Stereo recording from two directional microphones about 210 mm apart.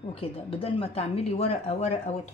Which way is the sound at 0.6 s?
30° left (ahead or behind).